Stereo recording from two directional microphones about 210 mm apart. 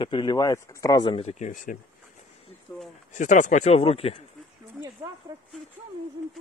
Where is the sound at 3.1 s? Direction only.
35° left (ahead or behind).